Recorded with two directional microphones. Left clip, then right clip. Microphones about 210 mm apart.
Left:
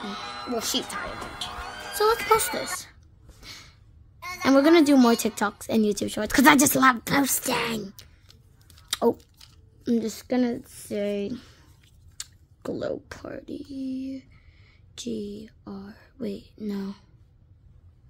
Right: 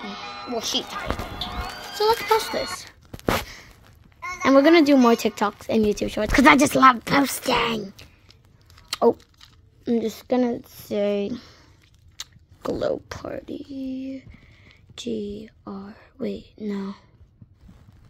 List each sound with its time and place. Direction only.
0.0 s music: 10° right (ahead or behind)
0.8 s speech: 15° right (ahead or behind)
2.0 s a woman's voice: 20° left (ahead or behind)
4.4 s a woman's voice: 10° left (ahead or behind)
8.9 s a sound: 10° left (ahead or behind)
9.8 s speech: 10° left (ahead or behind)